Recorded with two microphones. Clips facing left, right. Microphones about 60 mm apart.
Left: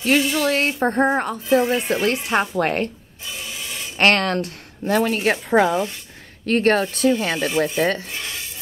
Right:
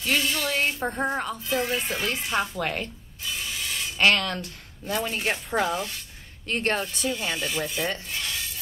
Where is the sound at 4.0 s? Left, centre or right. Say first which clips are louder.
Left 5 dB; left.